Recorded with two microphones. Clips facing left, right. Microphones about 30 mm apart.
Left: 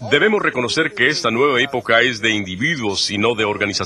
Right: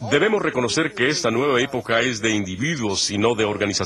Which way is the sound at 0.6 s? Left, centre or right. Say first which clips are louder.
Left 1 dB; left.